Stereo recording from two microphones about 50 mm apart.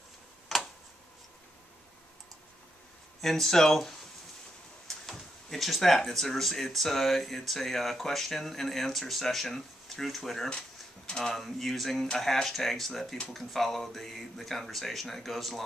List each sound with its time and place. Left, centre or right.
0.5 s tick: centre
3.2 s speech: centre
11.1 s speech: centre
11.3 s speech: centre